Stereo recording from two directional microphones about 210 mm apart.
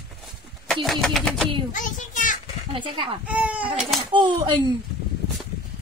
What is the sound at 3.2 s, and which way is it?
Speech, 5° right (ahead or behind).